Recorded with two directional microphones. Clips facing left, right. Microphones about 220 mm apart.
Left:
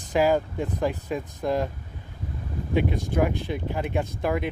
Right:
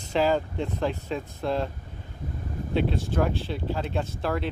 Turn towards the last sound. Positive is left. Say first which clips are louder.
# left 2 dB
turn(degrees=15)  # may be behind; listen again after turning